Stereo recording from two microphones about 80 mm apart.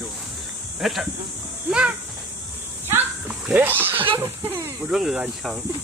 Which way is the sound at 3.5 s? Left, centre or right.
Right.